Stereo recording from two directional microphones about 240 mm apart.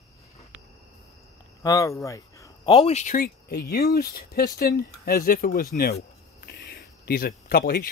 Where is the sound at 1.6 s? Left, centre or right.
Centre.